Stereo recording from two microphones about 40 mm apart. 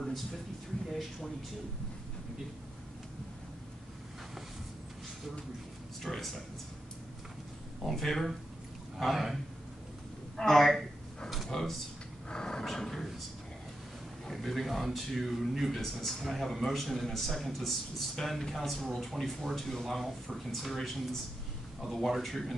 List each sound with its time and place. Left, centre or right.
0.0 s a sound: centre
0.8 s speech: centre
6.0 s speech: centre
7.8 s speech: centre
10.3 s speech: centre
11.4 s a sound: centre
12.3 s dog: centre
12.6 s a sound: centre
14.2 s speech: centre